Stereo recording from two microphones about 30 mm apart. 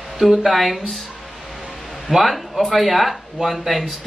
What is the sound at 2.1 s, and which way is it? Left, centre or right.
Speech, centre.